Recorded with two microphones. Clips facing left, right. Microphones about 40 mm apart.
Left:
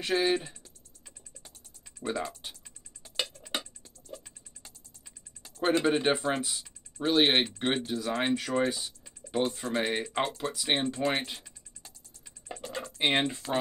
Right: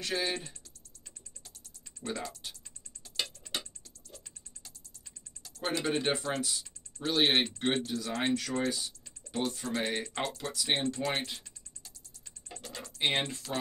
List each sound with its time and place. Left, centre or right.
0.0 s speech: centre
2.0 s speech: left
3.0 s music: left
5.4 s speech: left
12.4 s a sound: left